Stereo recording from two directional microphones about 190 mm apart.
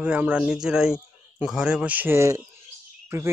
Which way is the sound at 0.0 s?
5° right (ahead or behind).